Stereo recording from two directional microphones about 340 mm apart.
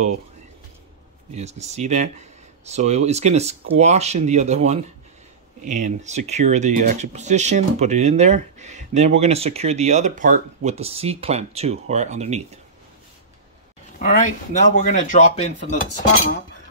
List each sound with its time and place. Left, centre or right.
1.3 s speech: centre
13.9 s a man's voice: left